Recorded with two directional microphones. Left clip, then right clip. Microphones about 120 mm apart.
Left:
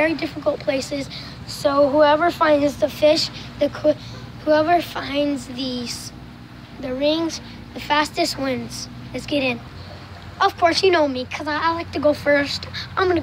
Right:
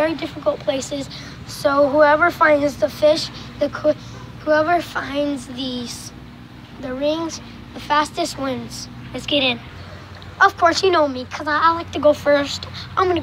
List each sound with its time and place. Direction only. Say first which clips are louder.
0.0 s a woman's voice: even; 20° left (ahead or behind)
3.1 s speech: even; 30° left (ahead or behind)
3.5 s a woman's voice: even; 20° left (ahead or behind)
10.4 s speech: right 3 dB; 5° left (ahead or behind)
10.9 s a woman's voice: right 1 dB; 15° left (ahead or behind)